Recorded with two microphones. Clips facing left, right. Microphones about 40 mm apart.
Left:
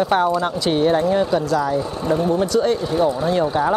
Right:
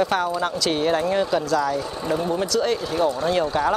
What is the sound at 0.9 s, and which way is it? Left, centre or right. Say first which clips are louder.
Speech: left 3 dB; centre.